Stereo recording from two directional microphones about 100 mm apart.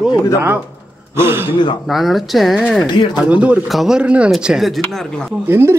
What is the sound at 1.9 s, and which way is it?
Speech, centre (ahead or behind).